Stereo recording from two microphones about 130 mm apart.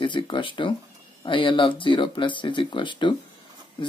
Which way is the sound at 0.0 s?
40° left (ahead or behind).